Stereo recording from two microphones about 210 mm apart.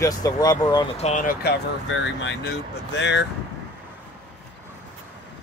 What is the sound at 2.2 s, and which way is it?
Speech, 55° left (ahead or behind).